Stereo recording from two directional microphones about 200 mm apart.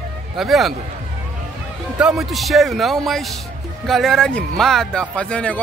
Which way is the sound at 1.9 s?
Centre (ahead or behind).